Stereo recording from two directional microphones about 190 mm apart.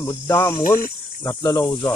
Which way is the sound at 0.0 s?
15° left (ahead or behind).